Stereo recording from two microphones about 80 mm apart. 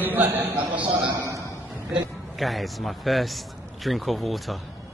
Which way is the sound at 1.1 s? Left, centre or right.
Right.